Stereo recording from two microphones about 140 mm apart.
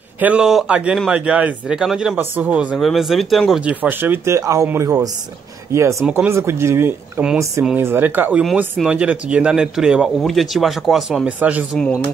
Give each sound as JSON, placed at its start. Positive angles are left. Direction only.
{"t": 0.2, "sound": "speech", "side_deg": -5}
{"t": 11.7, "sound": "speech", "side_deg": 5}